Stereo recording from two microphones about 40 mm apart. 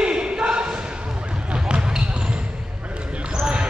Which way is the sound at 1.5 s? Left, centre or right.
Right.